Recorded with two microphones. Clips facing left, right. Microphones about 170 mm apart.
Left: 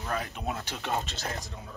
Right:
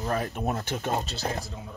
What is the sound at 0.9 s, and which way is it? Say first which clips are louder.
Speech: right 2 dB; 35° right (ahead or behind).